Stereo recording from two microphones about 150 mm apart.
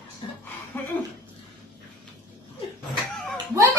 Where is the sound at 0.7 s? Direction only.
15° left (ahead or behind).